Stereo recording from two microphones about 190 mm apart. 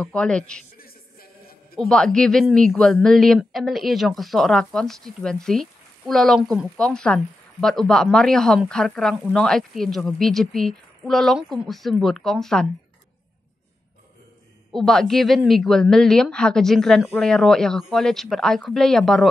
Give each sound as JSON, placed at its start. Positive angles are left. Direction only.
{"t": 0.0, "sound": "speech", "side_deg": 5}
{"t": 0.7, "sound": "music", "side_deg": 50}
{"t": 1.8, "sound": "speech", "side_deg": 5}
{"t": 14.7, "sound": "speech", "side_deg": 0}